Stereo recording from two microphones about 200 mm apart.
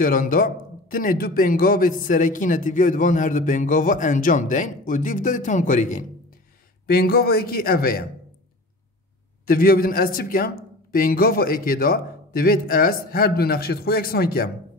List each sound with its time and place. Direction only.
0.0 s a man's voice: 45° left (ahead or behind)
9.5 s a man's voice: 45° left (ahead or behind)